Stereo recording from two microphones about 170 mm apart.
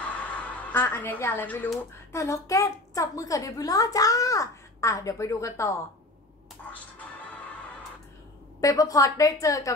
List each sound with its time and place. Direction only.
0.0 s speech: 10° left (ahead or behind)
8.5 s a woman's voice: 20° left (ahead or behind)